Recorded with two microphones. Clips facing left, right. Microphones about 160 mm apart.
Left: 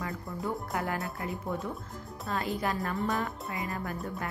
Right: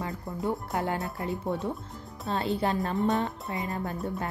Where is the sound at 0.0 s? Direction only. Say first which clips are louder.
Right 3 dB; 25° right (ahead or behind).